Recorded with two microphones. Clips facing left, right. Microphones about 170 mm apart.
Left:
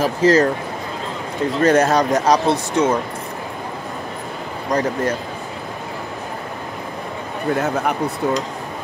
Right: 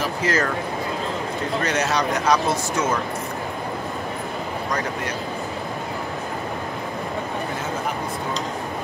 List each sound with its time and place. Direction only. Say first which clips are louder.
0.0 s speech: left 8 dB; 40° left (ahead or behind)
1.6 s speech: left 10 dB; 50° left (ahead or behind)
7.5 s speech: left 7 dB; 65° left (ahead or behind)